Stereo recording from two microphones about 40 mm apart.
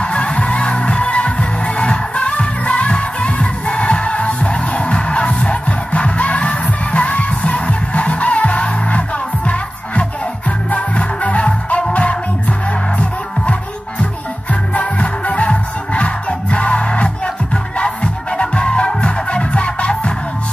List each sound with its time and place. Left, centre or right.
0.0 s music: left
10.7 s music: left
14.5 s music: left